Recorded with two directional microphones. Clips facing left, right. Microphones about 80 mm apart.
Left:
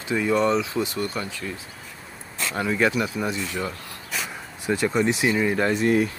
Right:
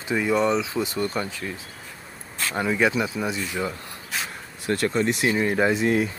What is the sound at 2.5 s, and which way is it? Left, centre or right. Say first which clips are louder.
Speech: right 1 dB; centre.